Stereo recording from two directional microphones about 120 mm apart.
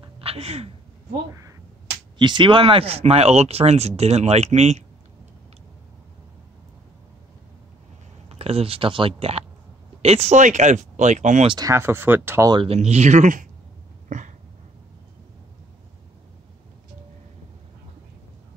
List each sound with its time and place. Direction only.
0.0 s a sound: 55° right (ahead or behind)
2.1 s speech: 40° right (ahead or behind); by 4.8 s 70° right (ahead or behind)
8.3 s speech: 55° right (ahead or behind)
10.0 s speech: 65° right (ahead or behind); by 11.4 s 85° right
11.4 s speech: 35° right (ahead or behind)
11.7 s speech: 20° right (ahead or behind)
12.6 s speech: 65° right (ahead or behind)
14.0 s a sound: 90° right